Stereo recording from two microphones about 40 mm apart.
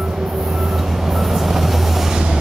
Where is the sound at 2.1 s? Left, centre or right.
Centre.